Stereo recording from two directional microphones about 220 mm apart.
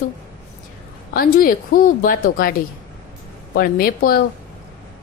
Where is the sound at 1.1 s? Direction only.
40° left (ahead or behind).